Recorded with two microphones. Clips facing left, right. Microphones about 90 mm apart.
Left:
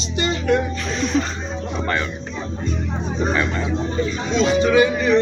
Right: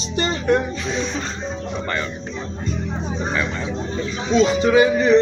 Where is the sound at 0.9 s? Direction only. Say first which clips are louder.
Left 5 dB; 5° left (ahead or behind).